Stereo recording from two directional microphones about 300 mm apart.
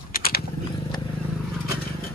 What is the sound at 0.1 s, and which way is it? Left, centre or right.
Wild animals, left.